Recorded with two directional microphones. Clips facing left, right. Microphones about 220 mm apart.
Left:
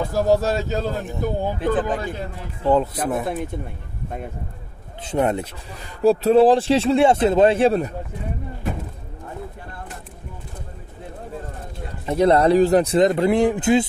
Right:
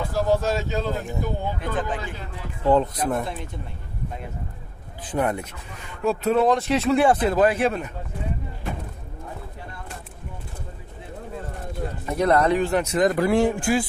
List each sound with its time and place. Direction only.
0.1 s speech: 40° left (ahead or behind)
2.6 s speech: 5° left (ahead or behind)
5.0 s speech: 25° left (ahead or behind)
12.1 s speech: 30° left (ahead or behind)